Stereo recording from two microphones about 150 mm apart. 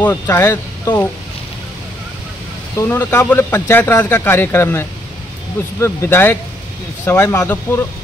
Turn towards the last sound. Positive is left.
turn(degrees=15)  # may be behind; listen again after turning